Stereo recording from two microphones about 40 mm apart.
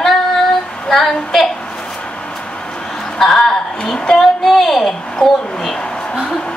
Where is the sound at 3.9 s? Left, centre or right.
Left.